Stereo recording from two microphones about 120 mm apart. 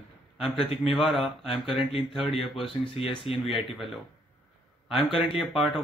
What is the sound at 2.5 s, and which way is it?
Speech, 45° left (ahead or behind).